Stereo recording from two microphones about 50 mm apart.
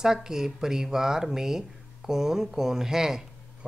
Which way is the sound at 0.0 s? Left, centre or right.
Centre.